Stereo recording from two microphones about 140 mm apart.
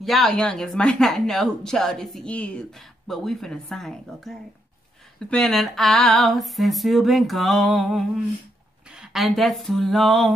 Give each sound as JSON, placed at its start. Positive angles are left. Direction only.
{"t": 0.0, "sound": "speech", "side_deg": 0}